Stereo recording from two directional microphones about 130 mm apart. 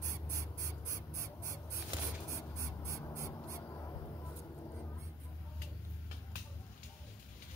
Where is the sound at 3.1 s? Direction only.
20° left (ahead or behind).